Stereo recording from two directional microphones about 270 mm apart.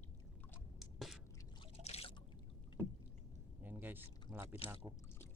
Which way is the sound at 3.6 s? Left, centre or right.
Centre.